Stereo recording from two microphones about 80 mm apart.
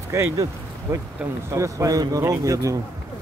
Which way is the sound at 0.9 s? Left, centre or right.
Right.